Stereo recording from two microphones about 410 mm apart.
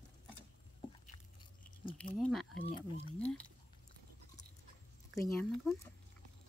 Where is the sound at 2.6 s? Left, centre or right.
Centre.